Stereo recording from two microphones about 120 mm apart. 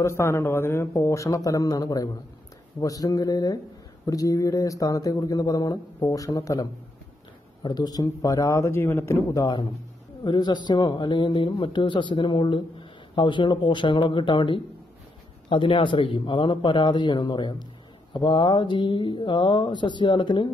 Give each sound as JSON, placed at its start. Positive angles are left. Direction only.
{"t": 0.0, "sound": "a man's voice", "side_deg": 20}